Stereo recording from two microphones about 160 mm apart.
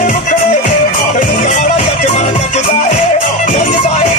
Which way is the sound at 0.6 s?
70° left (ahead or behind).